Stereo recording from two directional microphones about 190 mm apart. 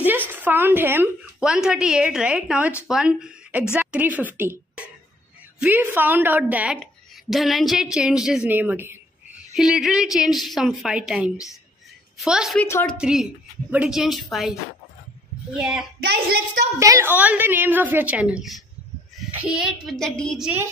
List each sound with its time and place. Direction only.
0.3 s a woman's voice: 10° right (ahead or behind)
12.6 s a woman's voice: 15° left (ahead or behind)
12.9 s speech: 5° right (ahead or behind)
16.0 s speech: 60° right (ahead or behind)
16.8 s a woman's voice: 15° right (ahead or behind)